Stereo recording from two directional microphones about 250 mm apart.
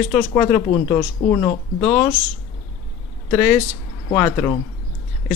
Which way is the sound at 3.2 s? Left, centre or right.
Left.